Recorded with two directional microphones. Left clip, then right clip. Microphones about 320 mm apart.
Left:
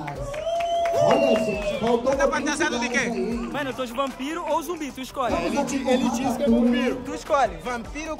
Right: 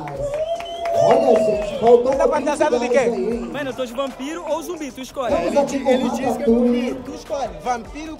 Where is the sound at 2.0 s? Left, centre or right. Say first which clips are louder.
Right 4 dB; centre.